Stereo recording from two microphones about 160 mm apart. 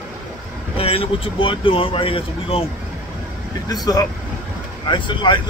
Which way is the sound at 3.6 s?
25° left (ahead or behind).